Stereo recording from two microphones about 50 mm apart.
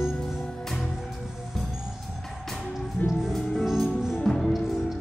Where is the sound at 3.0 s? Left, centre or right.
Left.